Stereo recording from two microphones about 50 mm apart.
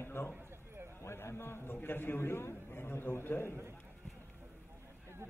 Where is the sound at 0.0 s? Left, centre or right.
Left.